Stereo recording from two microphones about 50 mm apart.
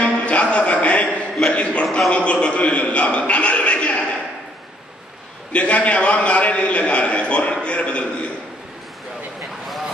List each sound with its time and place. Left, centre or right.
0.0 s music: left
1.0 s a sound: left
2.0 s a man's voice: left
5.5 s a man's voice: left